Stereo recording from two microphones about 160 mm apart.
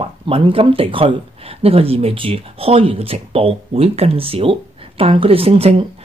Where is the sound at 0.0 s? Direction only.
35° right (ahead or behind).